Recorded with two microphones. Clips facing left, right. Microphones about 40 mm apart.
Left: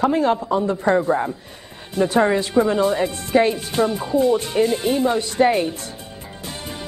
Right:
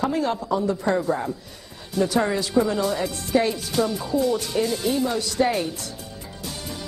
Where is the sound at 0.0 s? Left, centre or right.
Left.